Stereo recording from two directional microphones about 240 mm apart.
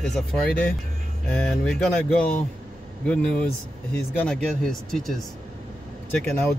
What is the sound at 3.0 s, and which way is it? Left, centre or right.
Speech, centre.